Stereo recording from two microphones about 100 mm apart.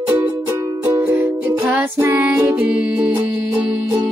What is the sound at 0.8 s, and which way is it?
Music, 25° right (ahead or behind).